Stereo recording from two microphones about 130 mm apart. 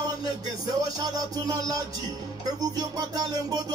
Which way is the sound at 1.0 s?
25° right (ahead or behind).